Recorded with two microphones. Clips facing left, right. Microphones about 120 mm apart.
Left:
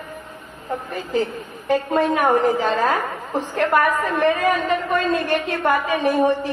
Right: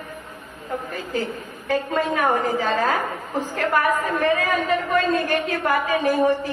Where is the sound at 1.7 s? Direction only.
30° left (ahead or behind).